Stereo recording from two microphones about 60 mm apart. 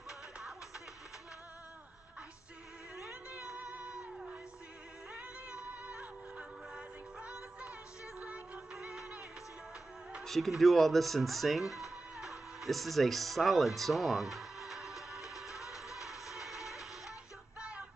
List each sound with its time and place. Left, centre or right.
3.4 s music: centre
10.2 s music: centre
10.6 s speech: centre
13.7 s music: centre
15.5 s music: left
17.6 s music: centre